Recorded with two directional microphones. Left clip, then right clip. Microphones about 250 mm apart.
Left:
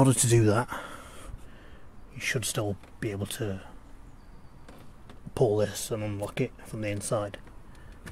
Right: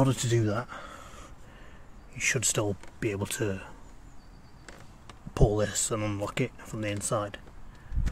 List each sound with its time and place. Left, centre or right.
0.0 s speech: centre
2.1 s speech: centre
5.3 s speech: centre